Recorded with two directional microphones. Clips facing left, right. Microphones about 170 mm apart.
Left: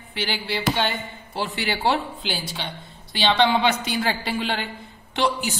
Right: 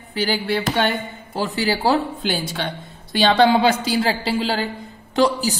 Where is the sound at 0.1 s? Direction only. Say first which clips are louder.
Right 6 dB; 40° right (ahead or behind).